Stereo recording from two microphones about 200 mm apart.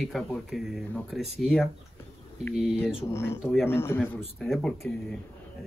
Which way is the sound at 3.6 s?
10° left (ahead or behind).